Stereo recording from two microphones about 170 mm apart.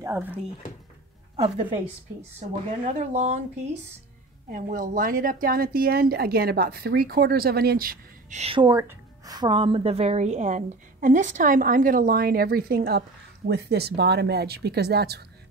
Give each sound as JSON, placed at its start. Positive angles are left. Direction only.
{"t": 0.0, "sound": "speech", "side_deg": -10}
{"t": 1.3, "sound": "a woman's voice", "side_deg": -35}
{"t": 2.8, "sound": "speech", "side_deg": -40}
{"t": 4.5, "sound": "speech", "side_deg": -55}
{"t": 8.4, "sound": "speech", "side_deg": -30}
{"t": 8.7, "sound": "a woman's voice", "side_deg": -20}